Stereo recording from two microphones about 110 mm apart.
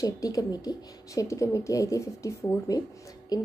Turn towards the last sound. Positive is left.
turn(degrees=35)  # may be behind; listen again after turning